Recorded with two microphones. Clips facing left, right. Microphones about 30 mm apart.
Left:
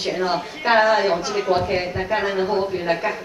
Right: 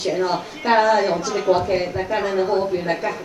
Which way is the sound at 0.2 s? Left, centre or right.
Left.